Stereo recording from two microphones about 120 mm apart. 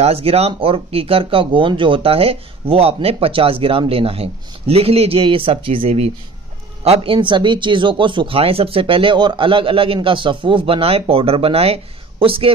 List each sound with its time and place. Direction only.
0.0 s speech: 55° right (ahead or behind)